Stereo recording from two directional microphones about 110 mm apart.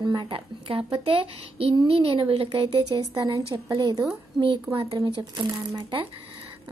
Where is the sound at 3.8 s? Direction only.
40° right (ahead or behind).